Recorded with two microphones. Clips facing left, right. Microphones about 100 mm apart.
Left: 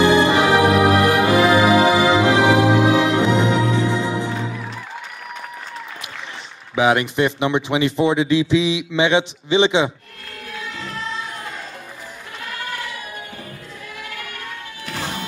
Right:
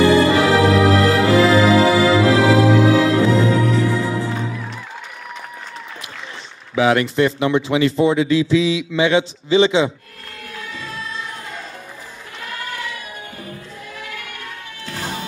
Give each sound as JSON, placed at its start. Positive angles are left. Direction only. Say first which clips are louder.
{"t": 0.0, "sound": "music", "louder": "right 1 dB", "side_deg": 25}
{"t": 6.7, "sound": "speech", "louder": "right 1 dB", "side_deg": 20}